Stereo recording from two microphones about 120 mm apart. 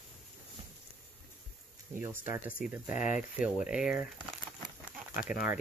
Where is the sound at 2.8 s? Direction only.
90° left.